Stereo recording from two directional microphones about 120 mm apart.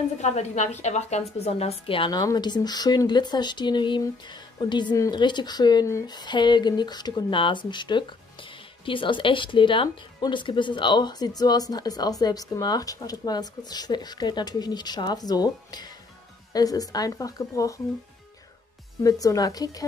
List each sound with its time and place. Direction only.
0.2 s a woman's voice: 70° left (ahead or behind); by 17.7 s 30° left (ahead or behind)
19.0 s speech: 30° left (ahead or behind)